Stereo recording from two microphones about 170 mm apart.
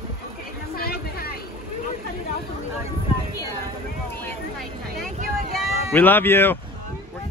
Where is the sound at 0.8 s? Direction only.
65° left (ahead or behind).